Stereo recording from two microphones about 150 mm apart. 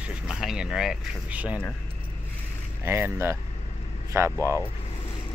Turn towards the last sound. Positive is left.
turn(degrees=-20)  # may be behind; listen again after turning